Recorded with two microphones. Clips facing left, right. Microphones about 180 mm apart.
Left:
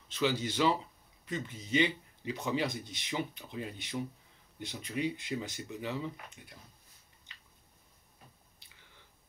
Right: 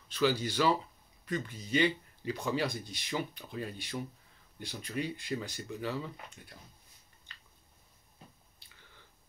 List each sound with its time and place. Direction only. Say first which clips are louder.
0.1 s speech: right 2 dB; 20° left (ahead or behind)